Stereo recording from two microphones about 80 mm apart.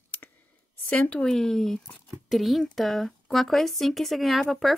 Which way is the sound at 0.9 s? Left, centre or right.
Centre.